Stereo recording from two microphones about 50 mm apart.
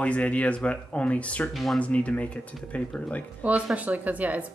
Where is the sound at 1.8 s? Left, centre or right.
Left.